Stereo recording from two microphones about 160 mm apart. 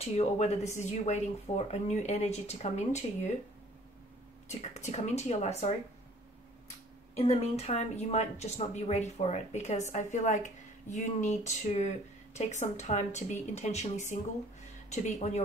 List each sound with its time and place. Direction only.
0.0 s speech: 45° left (ahead or behind)
4.5 s speech: 45° left (ahead or behind)
7.2 s speech: 40° left (ahead or behind)